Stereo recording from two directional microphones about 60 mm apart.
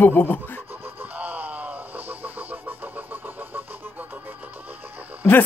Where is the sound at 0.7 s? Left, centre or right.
Right.